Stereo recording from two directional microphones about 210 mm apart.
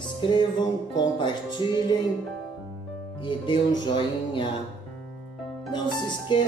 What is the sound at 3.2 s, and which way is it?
Music, 20° left (ahead or behind).